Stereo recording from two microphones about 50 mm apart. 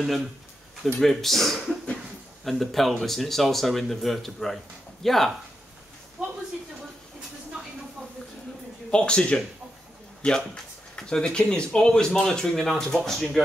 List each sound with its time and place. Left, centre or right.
0.0 s speech: centre
6.2 s a sound: centre
8.9 s speech: centre